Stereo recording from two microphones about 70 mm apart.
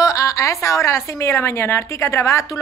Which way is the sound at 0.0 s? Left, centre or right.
Left.